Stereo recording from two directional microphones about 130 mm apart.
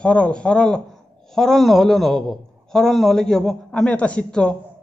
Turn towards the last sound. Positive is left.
turn(degrees=5)  # may be behind; listen again after turning